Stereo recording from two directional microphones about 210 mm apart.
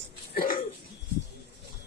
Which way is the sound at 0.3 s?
45° left (ahead or behind).